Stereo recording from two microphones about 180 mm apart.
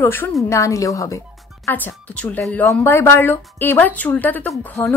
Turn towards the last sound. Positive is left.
turn(degrees=15)  # may be behind; listen again after turning